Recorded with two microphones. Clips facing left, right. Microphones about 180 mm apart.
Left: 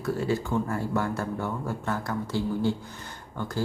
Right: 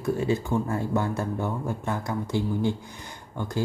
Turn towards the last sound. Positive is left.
turn(degrees=-15)  # may be behind; listen again after turning